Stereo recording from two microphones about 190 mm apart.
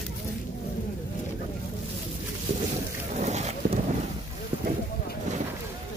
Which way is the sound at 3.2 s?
35° right (ahead or behind).